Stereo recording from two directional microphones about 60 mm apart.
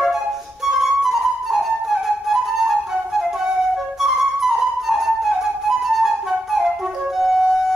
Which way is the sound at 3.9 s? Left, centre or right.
Centre.